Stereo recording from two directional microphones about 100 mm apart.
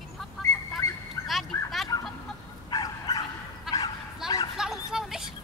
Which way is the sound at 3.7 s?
5° right (ahead or behind).